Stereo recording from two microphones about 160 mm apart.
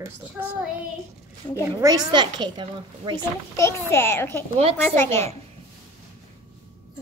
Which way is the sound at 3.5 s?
15° left (ahead or behind).